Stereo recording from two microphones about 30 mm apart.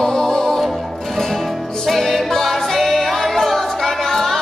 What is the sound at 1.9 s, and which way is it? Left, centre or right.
Music, centre.